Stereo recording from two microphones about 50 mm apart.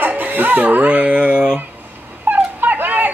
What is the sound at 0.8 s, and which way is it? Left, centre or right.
Speech, right.